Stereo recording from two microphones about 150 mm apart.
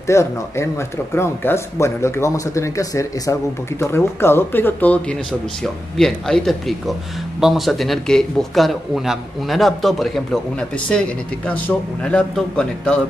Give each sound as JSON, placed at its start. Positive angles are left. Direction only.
{"t": 0.0, "sound": "speech", "side_deg": 20}